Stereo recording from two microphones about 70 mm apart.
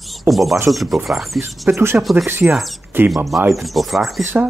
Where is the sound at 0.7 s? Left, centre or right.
Centre.